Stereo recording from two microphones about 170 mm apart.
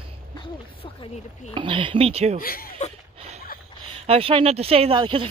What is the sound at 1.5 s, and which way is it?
Speech, 30° right (ahead or behind).